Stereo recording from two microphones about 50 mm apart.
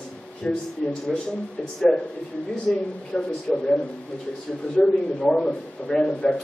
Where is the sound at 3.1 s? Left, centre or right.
Centre.